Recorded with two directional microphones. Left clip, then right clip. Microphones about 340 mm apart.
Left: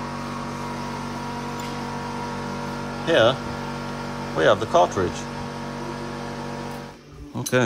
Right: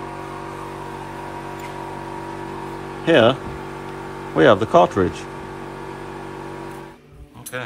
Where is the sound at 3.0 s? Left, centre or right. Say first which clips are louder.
Right 4 dB; centre.